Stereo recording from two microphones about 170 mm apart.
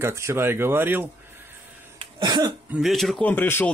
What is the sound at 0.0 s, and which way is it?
Speech, 15° right (ahead or behind).